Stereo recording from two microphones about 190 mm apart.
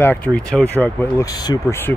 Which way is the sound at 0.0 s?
10° left (ahead or behind).